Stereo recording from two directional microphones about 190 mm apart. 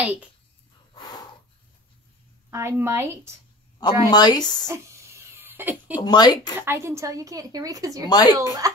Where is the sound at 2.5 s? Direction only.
15° right (ahead or behind).